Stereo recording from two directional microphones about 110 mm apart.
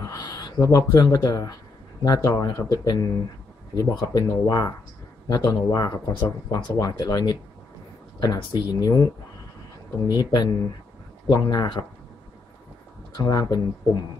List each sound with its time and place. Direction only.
0.0 s speech: 35° left (ahead or behind)
10.1 s speech: 40° left (ahead or behind)
13.2 s speech: 35° left (ahead or behind)